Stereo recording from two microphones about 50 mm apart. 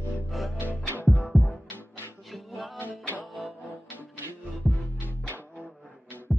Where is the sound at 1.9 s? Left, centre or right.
Left.